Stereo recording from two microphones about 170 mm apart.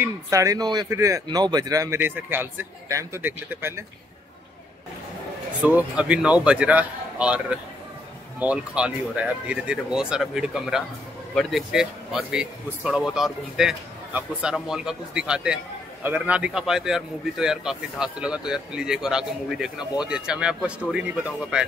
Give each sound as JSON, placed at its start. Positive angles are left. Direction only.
{"t": 0.0, "sound": "a man's voice", "side_deg": -20}
{"t": 5.6, "sound": "a man's voice", "side_deg": -10}